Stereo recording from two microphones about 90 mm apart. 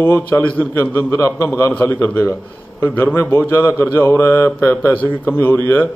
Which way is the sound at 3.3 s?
30° left (ahead or behind).